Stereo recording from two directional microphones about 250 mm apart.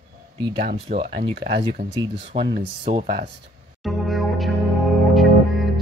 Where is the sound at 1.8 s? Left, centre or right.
Right.